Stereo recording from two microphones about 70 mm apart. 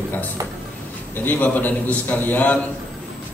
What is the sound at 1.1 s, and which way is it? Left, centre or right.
A man's voice, left.